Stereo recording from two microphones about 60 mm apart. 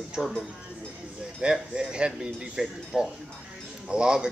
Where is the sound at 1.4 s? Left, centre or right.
Centre.